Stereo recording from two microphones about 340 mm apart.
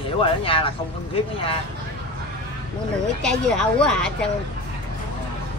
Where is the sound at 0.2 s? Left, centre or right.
Centre.